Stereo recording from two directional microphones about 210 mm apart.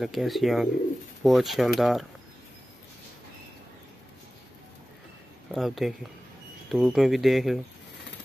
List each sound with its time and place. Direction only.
0.0 s speech: centre (ahead or behind)
5.5 s speech: centre (ahead or behind)